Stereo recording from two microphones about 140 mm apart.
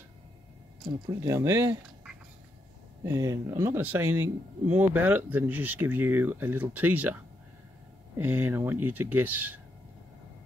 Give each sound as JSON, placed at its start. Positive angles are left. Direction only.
{"t": 1.2, "sound": "speech", "side_deg": -20}
{"t": 3.0, "sound": "speech", "side_deg": -20}
{"t": 8.2, "sound": "speech", "side_deg": -15}